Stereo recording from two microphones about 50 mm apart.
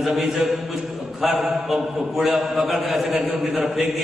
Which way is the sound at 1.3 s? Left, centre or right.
Centre.